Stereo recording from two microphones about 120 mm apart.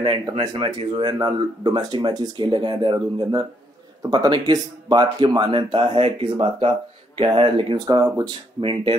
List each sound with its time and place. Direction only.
0.0 s speech: 40° right (ahead or behind)
8.5 s speech: 45° right (ahead or behind)